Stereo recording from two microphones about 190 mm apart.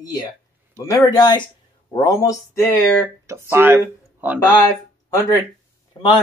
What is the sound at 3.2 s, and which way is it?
Speech, 15° right (ahead or behind).